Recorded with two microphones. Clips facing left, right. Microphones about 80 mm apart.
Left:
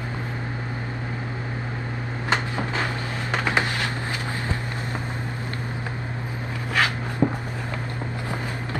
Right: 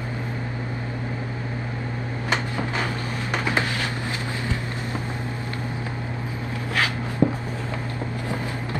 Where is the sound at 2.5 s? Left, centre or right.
Left.